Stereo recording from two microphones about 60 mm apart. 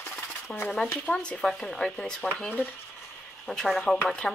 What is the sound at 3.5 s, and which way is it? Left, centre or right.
Speech, centre.